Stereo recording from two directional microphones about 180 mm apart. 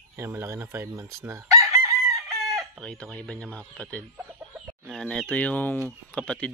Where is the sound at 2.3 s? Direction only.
Centre (ahead or behind).